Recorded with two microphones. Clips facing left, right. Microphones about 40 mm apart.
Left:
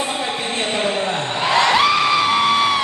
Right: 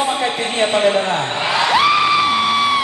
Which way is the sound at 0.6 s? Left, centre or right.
Right.